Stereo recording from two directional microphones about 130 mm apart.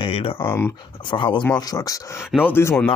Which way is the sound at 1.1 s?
40° left (ahead or behind).